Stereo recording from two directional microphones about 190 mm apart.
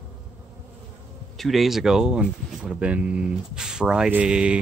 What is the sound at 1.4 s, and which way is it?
Speech, centre (ahead or behind).